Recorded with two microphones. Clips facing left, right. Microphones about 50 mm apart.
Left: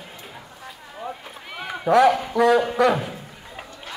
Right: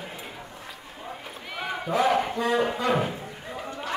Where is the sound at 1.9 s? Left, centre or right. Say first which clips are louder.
Left 7 dB; left.